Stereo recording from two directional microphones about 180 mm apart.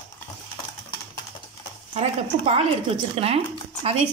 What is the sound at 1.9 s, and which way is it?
Speech, 35° right (ahead or behind).